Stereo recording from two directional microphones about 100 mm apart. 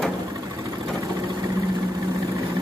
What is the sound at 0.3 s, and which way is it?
Vehicle, 35° right (ahead or behind).